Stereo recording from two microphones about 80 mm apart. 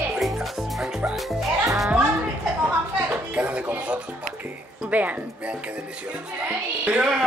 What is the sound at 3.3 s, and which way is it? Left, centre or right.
Speech, centre.